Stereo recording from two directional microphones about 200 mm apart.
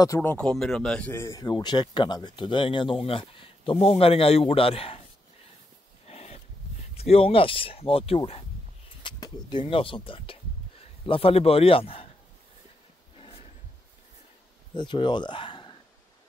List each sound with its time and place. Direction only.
0.0 s speech: 15° left (ahead or behind); by 5.0 s 30° left (ahead or behind)
6.0 s a sound: 35° left (ahead or behind)
7.0 s speech: 30° left (ahead or behind)
14.8 s speech: 25° left (ahead or behind)